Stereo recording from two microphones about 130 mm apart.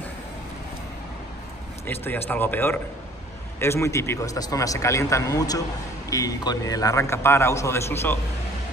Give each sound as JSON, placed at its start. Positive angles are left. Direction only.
{"t": 1.9, "sound": "a man's voice", "side_deg": 15}